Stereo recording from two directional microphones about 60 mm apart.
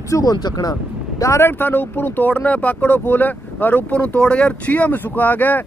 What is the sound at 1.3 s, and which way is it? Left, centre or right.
Speech, left.